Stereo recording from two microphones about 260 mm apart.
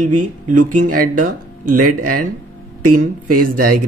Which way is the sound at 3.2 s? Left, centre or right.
Right.